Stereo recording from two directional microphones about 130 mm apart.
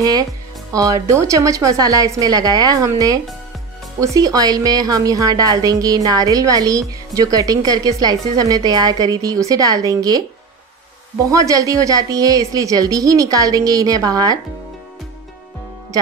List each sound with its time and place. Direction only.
0.0 s a woman's voice: 30° right (ahead or behind)
11.2 s a woman's voice: 25° right (ahead or behind)